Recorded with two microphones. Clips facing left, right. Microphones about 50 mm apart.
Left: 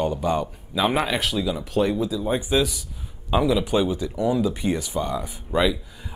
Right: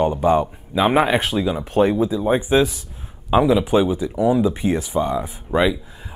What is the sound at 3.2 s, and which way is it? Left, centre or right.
Speech, centre.